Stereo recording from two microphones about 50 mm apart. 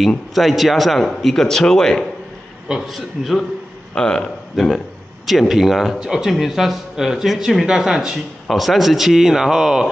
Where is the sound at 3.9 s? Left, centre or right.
Centre.